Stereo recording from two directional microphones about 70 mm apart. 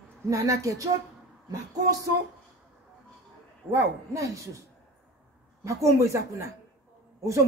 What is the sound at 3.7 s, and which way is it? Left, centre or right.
Speech, right.